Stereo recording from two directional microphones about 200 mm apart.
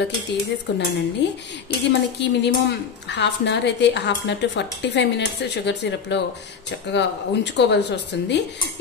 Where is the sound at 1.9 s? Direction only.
60° left (ahead or behind).